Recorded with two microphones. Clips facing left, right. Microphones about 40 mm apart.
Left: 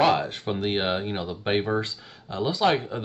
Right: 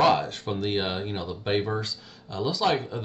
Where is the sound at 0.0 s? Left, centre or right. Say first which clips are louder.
Even; centre.